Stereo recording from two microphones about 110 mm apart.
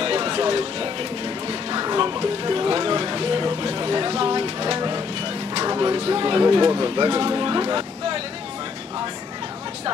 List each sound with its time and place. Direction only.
0.0 s music: 55° right (ahead or behind)
5.9 s speech: 60° right (ahead or behind); by 7.1 s 40° right (ahead or behind)
7.1 s speech: 55° right (ahead or behind)